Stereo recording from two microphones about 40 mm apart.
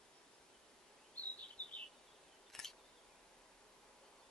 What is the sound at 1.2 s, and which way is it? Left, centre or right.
Bird vocalization, left.